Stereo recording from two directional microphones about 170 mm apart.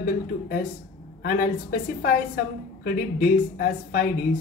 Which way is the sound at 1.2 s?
60° left (ahead or behind).